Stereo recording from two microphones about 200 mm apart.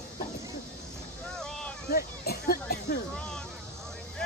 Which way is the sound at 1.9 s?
50° left (ahead or behind).